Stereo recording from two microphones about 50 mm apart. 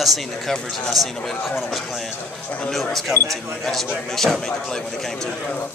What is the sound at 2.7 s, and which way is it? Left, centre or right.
A man's voice, centre.